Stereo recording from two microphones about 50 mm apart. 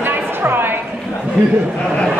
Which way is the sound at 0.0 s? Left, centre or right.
Right.